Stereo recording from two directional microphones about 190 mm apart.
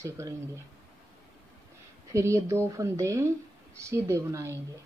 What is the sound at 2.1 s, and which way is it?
A woman's voice, 15° right (ahead or behind).